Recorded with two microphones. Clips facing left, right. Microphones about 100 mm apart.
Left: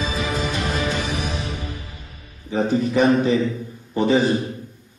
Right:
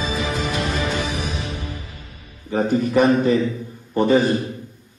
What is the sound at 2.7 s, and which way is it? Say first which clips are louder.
A man's voice: right 1 dB; 50° right (ahead or behind).